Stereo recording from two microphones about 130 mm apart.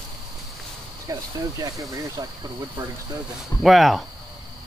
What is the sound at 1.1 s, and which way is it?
Speech, 30° right (ahead or behind).